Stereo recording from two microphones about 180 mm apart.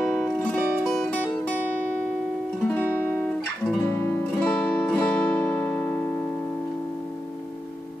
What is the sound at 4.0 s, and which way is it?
Music, 15° left (ahead or behind).